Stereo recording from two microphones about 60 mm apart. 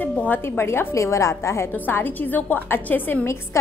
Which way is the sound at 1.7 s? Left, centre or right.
Left.